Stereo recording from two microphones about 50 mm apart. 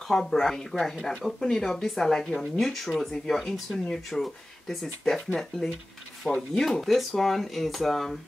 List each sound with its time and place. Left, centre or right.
0.1 s speech: centre